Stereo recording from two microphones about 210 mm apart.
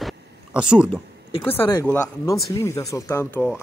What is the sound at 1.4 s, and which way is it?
Speech, 10° left (ahead or behind).